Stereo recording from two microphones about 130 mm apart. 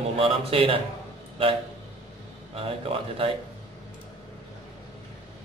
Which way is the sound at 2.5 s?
45° right (ahead or behind).